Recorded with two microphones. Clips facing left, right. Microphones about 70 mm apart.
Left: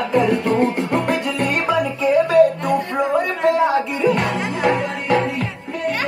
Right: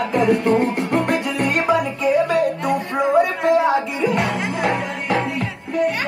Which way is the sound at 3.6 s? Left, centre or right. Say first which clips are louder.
Left 1 dB; centre.